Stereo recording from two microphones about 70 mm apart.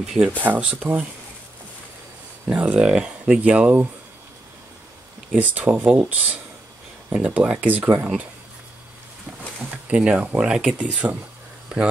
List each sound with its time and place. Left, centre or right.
0.0 s speech: centre
0.4 s speech: right
2.4 s speech: right
5.3 s speech: right
7.2 s speech: right
9.8 s speech: centre